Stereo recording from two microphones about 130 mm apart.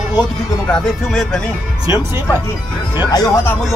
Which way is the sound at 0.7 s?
5° left (ahead or behind).